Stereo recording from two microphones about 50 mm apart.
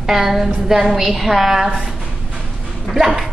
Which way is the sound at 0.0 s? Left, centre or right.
Centre.